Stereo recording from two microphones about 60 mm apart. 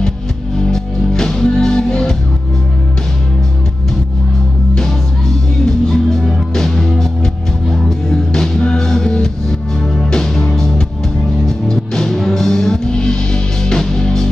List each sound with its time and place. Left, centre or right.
0.7 s music: centre
5.9 s music: centre